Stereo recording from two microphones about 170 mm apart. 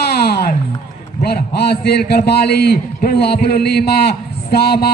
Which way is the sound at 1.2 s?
65° left (ahead or behind).